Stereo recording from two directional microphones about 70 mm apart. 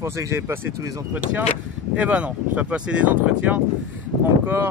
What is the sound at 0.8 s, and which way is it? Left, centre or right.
Speech, right.